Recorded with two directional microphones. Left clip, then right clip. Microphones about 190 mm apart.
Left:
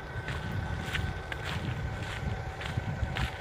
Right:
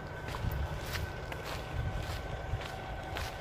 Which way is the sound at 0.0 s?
35° left (ahead or behind).